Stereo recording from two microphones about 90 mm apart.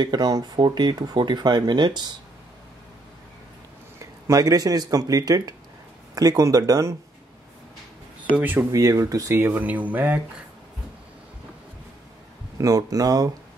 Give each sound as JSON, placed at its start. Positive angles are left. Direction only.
{"t": 0.0, "sound": "speech", "side_deg": -50}
{"t": 4.0, "sound": "speech", "side_deg": -40}
{"t": 8.4, "sound": "speech", "side_deg": -20}
{"t": 8.7, "sound": "speech", "side_deg": -35}
{"t": 9.4, "sound": "speech", "side_deg": -20}
{"t": 12.5, "sound": "speech", "side_deg": -40}